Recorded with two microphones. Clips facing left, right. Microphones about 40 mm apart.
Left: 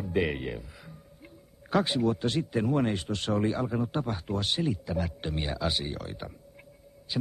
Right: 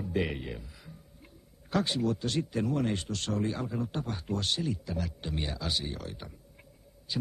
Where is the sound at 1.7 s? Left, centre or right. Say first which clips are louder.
Left 3 dB; centre.